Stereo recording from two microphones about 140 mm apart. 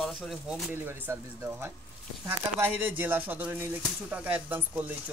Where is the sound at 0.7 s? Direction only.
15° right (ahead or behind).